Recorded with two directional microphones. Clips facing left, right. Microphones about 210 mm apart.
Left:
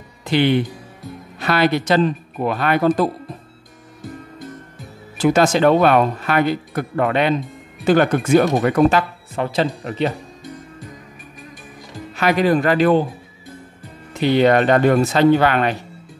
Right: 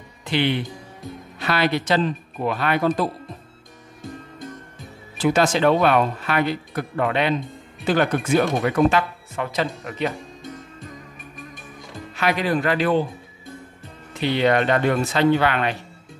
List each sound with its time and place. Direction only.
0.2 s speech: 45° left (ahead or behind)
5.1 s speech: 45° left (ahead or behind)
9.3 s speech: 30° left (ahead or behind)
12.2 s speech: 45° left (ahead or behind)
14.2 s speech: 45° left (ahead or behind)